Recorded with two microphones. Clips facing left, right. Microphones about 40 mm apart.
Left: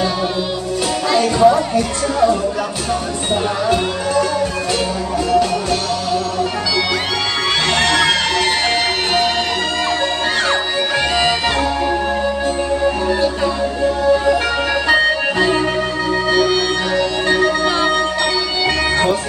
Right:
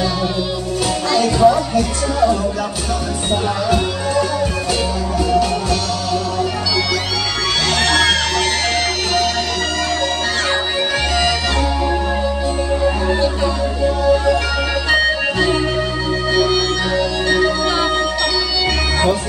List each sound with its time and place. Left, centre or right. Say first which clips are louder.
1.1 s music: left 1 dB; centre
5.3 s music: left 2 dB; centre
7.8 s music: right 1 dB; left
15.3 s music: left 1 dB; centre